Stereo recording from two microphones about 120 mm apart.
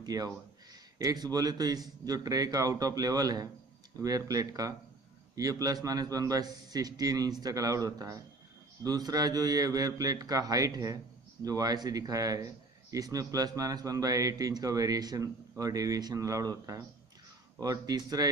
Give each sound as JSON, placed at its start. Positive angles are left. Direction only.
{"t": 0.0, "sound": "a man's voice", "side_deg": -30}